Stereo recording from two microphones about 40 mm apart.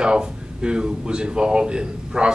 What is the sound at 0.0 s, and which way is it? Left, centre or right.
Speech, right.